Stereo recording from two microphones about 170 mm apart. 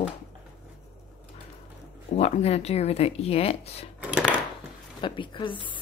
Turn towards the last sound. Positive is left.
turn(degrees=30)  # may be behind; listen again after turning